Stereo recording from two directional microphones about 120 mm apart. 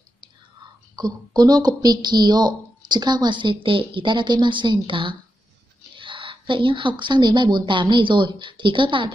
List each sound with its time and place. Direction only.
0.9 s speech: 35° right (ahead or behind)